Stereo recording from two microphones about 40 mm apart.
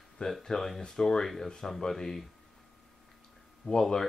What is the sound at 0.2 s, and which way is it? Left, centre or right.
Speech, centre.